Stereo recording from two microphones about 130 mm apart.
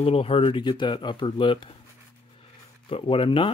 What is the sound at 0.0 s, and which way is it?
Speech, 45° left (ahead or behind).